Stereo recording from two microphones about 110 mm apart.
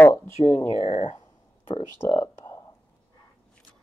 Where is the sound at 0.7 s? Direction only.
65° left (ahead or behind).